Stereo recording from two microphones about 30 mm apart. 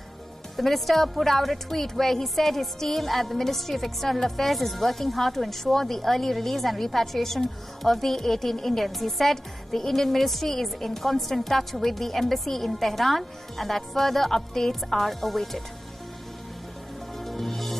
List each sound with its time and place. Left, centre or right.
0.6 s a woman's voice: centre
17.2 s music: centre